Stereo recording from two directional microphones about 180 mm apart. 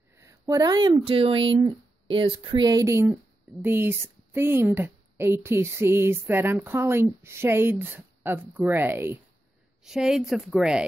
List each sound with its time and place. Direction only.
0.1 s a woman's voice: 15° right (ahead or behind)